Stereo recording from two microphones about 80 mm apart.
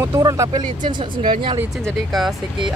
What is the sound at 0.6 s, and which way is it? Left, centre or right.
Speech, right.